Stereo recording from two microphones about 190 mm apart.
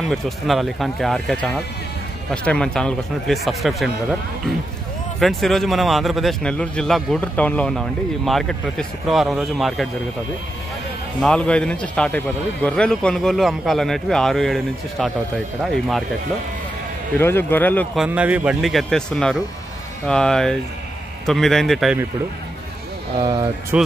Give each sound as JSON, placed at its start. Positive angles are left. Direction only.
{"t": 0.1, "sound": "speech", "side_deg": 0}
{"t": 5.2, "sound": "speech", "side_deg": 0}
{"t": 11.1, "sound": "speech", "side_deg": 5}
{"t": 17.2, "sound": "speech", "side_deg": 10}
{"t": 17.9, "sound": "speech", "side_deg": -5}
{"t": 23.2, "sound": "speech", "side_deg": -25}
{"t": 23.7, "sound": "speech", "side_deg": -10}